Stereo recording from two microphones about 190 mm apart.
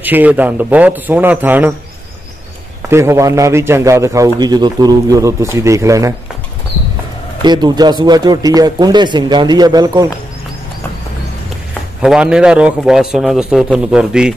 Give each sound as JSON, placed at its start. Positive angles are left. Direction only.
{"t": 0.0, "sound": "a man's voice", "side_deg": -10}
{"t": 2.9, "sound": "a man's voice", "side_deg": -15}
{"t": 7.4, "sound": "speech", "side_deg": -20}
{"t": 12.0, "sound": "a man's voice", "side_deg": -5}